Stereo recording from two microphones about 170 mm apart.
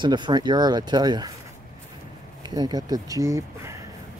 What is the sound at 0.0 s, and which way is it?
Speech, 25° right (ahead or behind).